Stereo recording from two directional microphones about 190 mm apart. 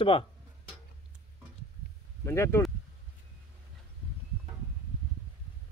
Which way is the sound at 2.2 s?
15° left (ahead or behind).